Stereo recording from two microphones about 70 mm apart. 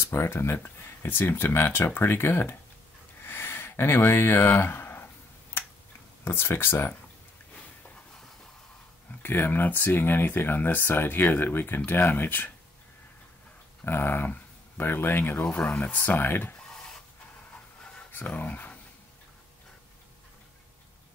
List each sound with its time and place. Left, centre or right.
0.0 s speech: left
3.3 s a sound: left
5.6 s tick-tock: left
6.2 s speech: left
9.2 s speech: left
13.8 s speech: left
16.6 s a sound: centre
18.1 s speech: left